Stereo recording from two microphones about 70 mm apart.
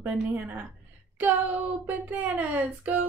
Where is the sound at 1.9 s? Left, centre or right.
Right.